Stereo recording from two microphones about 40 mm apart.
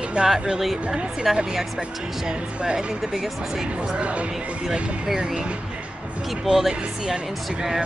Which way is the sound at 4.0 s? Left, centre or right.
Right.